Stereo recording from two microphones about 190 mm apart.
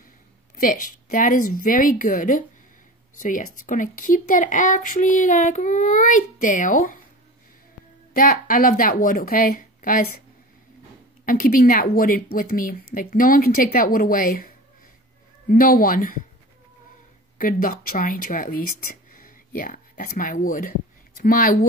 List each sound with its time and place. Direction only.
0.6 s speech: 45° left (ahead or behind)
8.1 s speech: 45° left (ahead or behind)
11.2 s speech: 50° left (ahead or behind)
17.4 s speech: 45° left (ahead or behind)